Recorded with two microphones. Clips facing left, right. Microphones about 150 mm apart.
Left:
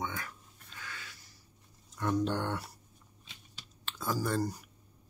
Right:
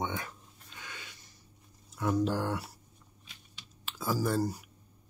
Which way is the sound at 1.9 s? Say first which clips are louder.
Right 2 dB; 5° right (ahead or behind).